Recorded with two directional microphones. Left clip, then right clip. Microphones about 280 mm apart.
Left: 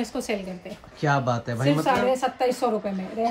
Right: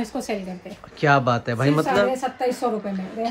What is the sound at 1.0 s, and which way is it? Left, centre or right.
Speech, centre.